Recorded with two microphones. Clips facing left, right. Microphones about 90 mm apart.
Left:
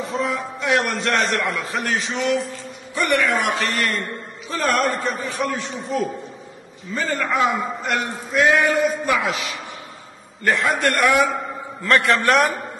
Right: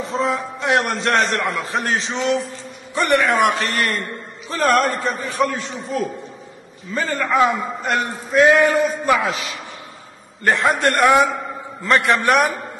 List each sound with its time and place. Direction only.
0.0 s a man's voice: 30° right (ahead or behind)
7.0 s a man's voice: 45° right (ahead or behind)
10.4 s a man's voice: 35° right (ahead or behind)
11.8 s a man's voice: 20° right (ahead or behind)